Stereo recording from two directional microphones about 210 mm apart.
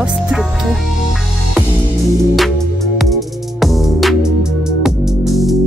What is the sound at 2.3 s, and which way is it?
Music, centre (ahead or behind).